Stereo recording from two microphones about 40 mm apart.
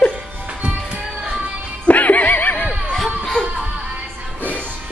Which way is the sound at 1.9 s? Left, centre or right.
Left.